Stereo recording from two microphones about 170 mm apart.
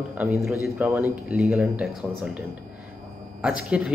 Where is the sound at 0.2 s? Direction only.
5° right (ahead or behind).